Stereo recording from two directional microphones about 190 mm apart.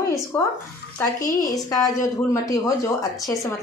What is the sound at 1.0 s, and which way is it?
A woman's voice, 20° left (ahead or behind).